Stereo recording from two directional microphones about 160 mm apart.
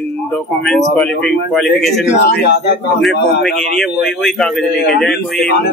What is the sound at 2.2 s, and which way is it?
Speech, 90° left.